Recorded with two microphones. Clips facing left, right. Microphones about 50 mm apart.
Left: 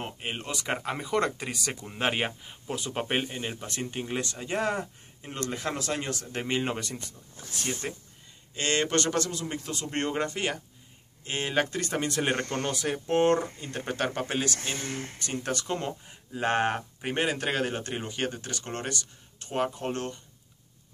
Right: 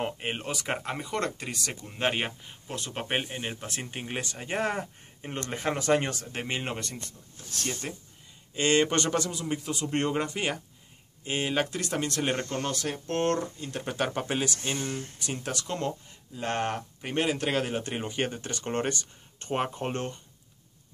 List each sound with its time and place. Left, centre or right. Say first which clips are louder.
0.0 s speech: right 4 dB; right
0.4 s speech: even; centre
4.1 s speech: right 1 dB; centre
6.2 s speech: left 3 dB; centre
7.5 s speech: left 1 dB; centre
8.5 s speech: right 3 dB; centre
12.4 s speech: left 1 dB; left
12.6 s speech: left 2 dB; centre
13.6 s speech: even; centre
14.9 s speech: even; left
15.4 s speech: left 1 dB; centre
16.1 s speech: left 5 dB; left
17.1 s speech: right 1 dB; centre
17.8 s speech: right 1 dB; centre